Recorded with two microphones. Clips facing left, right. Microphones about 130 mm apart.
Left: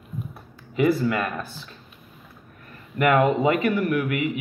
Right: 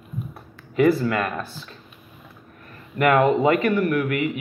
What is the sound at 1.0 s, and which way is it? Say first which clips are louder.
Speech: right 1 dB; 20° left (ahead or behind).